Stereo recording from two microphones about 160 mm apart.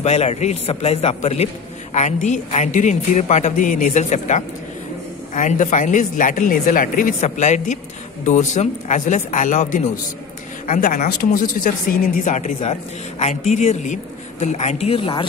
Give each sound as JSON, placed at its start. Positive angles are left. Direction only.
{"t": 0.0, "sound": "speech", "side_deg": 45}
{"t": 11.1, "sound": "speech", "side_deg": 65}